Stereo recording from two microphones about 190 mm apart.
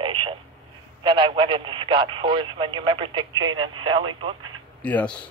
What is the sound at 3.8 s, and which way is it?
Speech, 25° right (ahead or behind).